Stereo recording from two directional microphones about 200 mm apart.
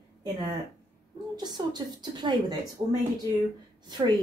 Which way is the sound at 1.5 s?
20° right (ahead or behind).